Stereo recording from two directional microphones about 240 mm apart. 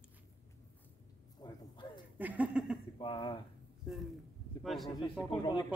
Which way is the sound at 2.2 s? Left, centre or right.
Centre.